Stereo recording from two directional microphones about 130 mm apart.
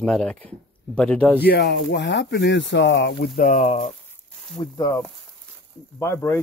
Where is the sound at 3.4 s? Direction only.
80° left.